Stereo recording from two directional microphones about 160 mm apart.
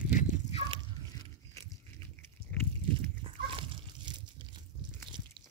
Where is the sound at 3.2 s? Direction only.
30° right (ahead or behind).